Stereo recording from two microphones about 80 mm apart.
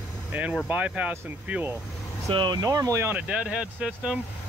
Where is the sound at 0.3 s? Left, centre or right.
Centre.